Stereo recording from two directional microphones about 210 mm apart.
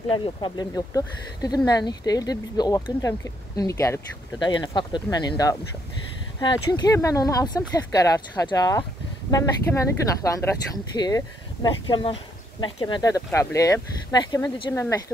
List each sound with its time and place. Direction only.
0.1 s speech: 20° left (ahead or behind)